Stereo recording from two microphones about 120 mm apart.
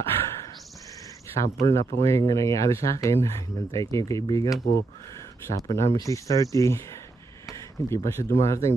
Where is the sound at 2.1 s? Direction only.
25° left (ahead or behind).